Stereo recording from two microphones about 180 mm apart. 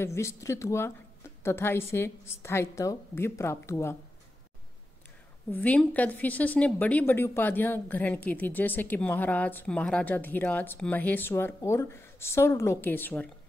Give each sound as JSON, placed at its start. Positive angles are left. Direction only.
{"t": 0.0, "sound": "a woman's voice", "side_deg": 15}
{"t": 5.5, "sound": "a woman's voice", "side_deg": 10}